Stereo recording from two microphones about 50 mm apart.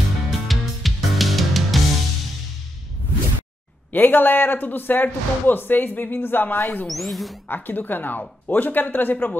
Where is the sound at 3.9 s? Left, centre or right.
Left.